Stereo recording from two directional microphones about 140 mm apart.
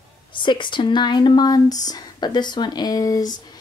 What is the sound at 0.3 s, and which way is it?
A woman's voice, 35° left (ahead or behind).